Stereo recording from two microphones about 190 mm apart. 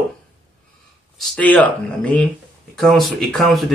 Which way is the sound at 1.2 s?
5° left (ahead or behind).